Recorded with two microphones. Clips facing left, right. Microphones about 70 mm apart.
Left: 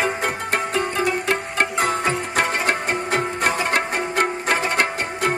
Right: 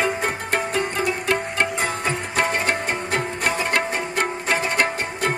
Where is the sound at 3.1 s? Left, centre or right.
Left.